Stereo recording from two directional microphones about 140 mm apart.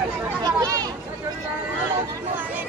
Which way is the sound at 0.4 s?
25° right (ahead or behind).